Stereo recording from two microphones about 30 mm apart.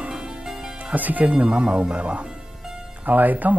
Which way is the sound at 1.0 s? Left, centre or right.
Right.